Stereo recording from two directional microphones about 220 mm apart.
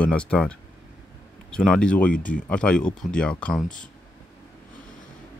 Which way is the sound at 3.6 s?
35° left (ahead or behind).